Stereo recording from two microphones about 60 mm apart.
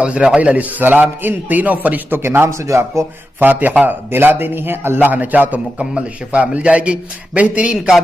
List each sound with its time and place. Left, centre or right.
0.0 s a man's voice: centre; by 2.5 s right
2.6 s speech: right
3.3 s a man's voice: right